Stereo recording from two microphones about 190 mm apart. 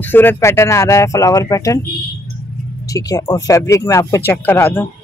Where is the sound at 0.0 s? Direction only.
10° left (ahead or behind).